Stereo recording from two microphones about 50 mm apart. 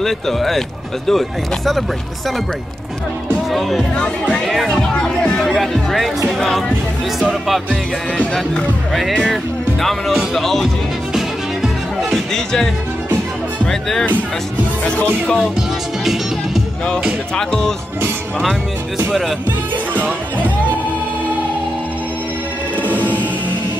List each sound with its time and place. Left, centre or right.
0.0 s speech: centre
4.3 s speech: centre
9.2 s speech: centre
11.1 s music: centre
13.7 s speech: centre
16.0 s music: centre
17.4 s speech: centre
19.9 s music: right